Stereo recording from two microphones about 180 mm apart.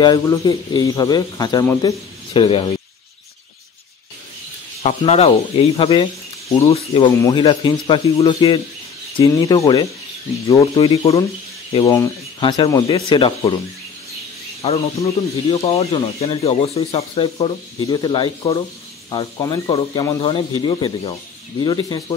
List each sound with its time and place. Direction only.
0.0 s speech: 20° left (ahead or behind)
2.3 s speech: 30° left (ahead or behind)
4.8 s speech: 35° left (ahead or behind)
7.1 s speech: 20° left (ahead or behind)
10.7 s speech: 35° left (ahead or behind)
11.8 s speech: 20° left (ahead or behind)
14.6 s speech: 35° left (ahead or behind)